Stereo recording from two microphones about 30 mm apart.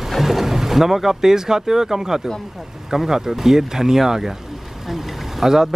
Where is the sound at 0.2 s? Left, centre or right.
Centre.